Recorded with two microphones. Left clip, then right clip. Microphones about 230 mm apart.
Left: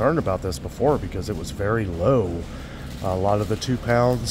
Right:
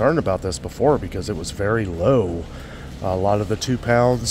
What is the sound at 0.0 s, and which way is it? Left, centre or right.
Speech, centre.